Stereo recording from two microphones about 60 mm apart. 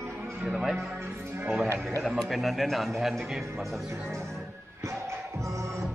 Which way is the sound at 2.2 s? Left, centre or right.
Centre.